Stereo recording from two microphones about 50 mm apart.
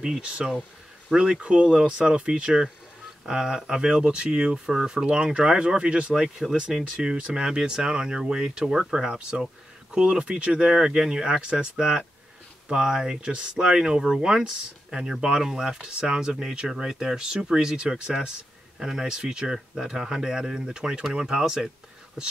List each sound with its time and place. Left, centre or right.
0.2 s speech: centre
6.2 s speech: centre
6.8 s speech: centre